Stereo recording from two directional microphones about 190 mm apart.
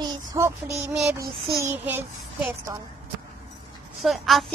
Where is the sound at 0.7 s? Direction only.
10° right (ahead or behind).